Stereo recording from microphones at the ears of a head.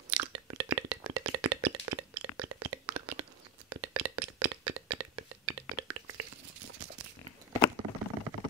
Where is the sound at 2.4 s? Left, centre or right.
Right.